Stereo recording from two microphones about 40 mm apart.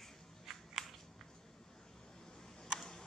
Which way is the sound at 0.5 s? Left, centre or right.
Centre.